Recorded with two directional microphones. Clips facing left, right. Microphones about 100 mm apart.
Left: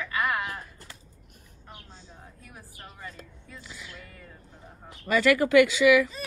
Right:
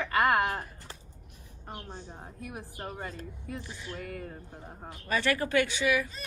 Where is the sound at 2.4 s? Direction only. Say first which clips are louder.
Right 10 dB; 65° right (ahead or behind).